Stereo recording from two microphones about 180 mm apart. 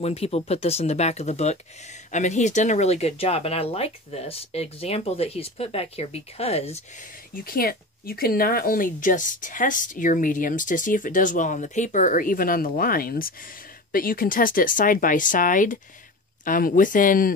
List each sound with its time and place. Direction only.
0.0 s speech: 35° left (ahead or behind)
7.4 s speech: 55° left (ahead or behind)